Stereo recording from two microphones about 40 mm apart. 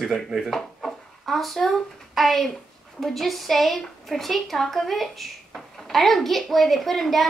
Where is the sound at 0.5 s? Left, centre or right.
Centre.